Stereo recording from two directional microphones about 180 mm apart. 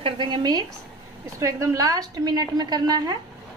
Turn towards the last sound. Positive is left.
turn(degrees=-25)  # may be behind; listen again after turning